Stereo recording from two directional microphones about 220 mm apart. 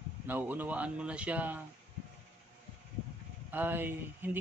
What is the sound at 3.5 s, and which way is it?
Speech, 10° right (ahead or behind).